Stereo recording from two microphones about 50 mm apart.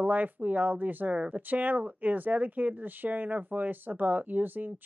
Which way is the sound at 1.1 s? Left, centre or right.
Right.